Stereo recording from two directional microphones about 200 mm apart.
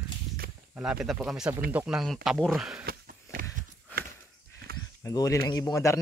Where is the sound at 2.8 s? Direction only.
45° right (ahead or behind).